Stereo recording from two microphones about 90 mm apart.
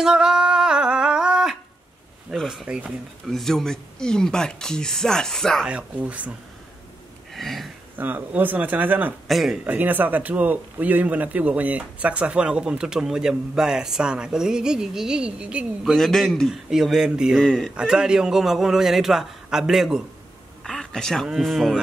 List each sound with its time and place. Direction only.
0.0 s a sound: 5° right (ahead or behind)
2.3 s speech: 5° right (ahead or behind)
3.3 s speech: 5° left (ahead or behind)
5.7 s speech: 15° right (ahead or behind)
7.3 s a sound: centre (ahead or behind)
8.0 s speech: 20° right (ahead or behind)
9.3 s a man's voice: centre (ahead or behind)
9.7 s speech: 20° right (ahead or behind)
15.8 s a man's voice: centre (ahead or behind)
17.4 s a man's voice: 5° left (ahead or behind)
17.7 s a man's voice: 5° right (ahead or behind)